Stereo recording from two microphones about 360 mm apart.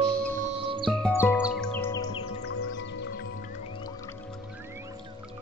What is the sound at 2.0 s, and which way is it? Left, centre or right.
Music, left.